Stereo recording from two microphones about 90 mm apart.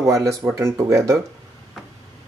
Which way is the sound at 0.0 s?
35° right (ahead or behind).